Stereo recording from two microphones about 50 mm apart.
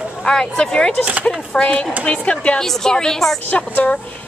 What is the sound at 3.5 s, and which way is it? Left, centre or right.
Speech, left.